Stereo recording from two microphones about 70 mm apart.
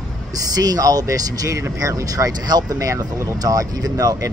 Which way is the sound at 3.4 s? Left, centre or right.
Right.